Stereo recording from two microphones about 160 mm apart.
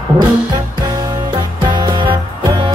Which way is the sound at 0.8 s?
25° right (ahead or behind).